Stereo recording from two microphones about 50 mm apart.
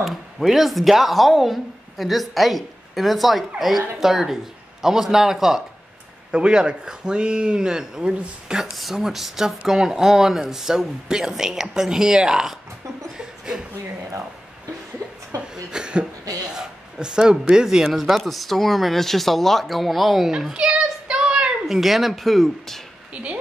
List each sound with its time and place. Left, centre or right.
0.0 s speech: centre
8.7 s speech: centre
15.0 s a sound: right
15.5 s a sound: centre
17.9 s speech: centre
21.6 s speech: centre